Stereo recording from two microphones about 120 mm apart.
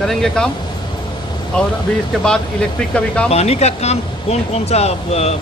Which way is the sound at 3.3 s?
65° left (ahead or behind).